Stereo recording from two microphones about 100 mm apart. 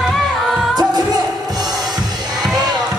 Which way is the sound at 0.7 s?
45° right (ahead or behind).